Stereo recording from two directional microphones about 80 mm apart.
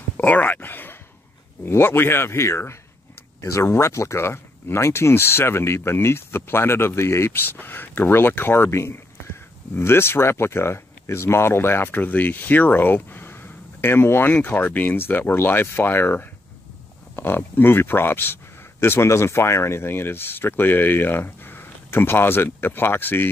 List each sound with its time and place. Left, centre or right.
0.2 s speech: left